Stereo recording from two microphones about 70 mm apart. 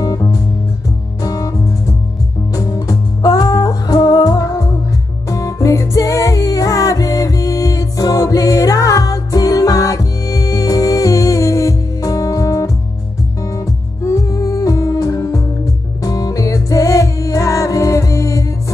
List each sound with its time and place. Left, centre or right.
0.0 s music: left
5.3 s music: left
16.0 s music: left